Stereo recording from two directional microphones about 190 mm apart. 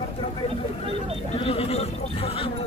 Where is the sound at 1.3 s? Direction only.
30° left (ahead or behind).